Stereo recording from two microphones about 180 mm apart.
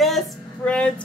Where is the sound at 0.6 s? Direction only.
5° left (ahead or behind).